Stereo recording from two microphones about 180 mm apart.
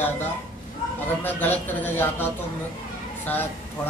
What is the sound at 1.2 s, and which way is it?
Speech, 10° left (ahead or behind).